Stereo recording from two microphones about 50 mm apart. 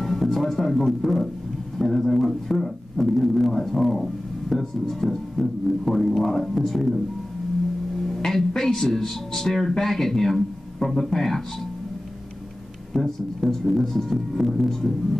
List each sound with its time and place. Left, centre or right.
0.0 s music: centre
1.8 s a man's voice: centre
8.1 s a man's voice: centre
12.9 s a man's voice: centre